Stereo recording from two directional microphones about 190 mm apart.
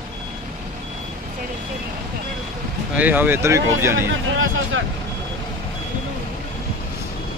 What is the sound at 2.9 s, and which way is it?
Speech, 10° right (ahead or behind).